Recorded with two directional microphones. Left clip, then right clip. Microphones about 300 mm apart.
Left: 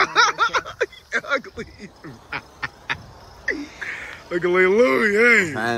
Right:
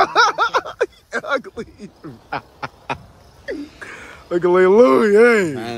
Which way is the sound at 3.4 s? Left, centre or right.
Centre.